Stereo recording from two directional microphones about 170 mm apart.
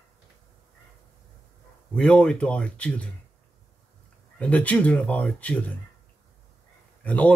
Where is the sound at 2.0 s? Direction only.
5° left (ahead or behind).